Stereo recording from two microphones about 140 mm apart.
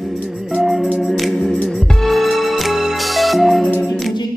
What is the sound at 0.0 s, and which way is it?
Music, centre (ahead or behind).